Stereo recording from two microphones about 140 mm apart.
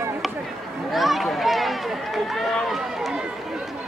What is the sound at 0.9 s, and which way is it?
Run, centre (ahead or behind).